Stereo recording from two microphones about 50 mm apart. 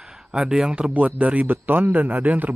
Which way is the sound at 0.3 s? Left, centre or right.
Centre.